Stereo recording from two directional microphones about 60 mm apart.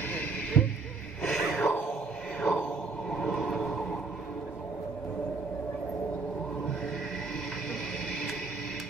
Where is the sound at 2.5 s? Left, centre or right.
Centre.